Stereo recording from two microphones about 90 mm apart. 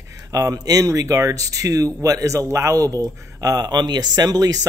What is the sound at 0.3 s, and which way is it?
Speech, 40° right (ahead or behind).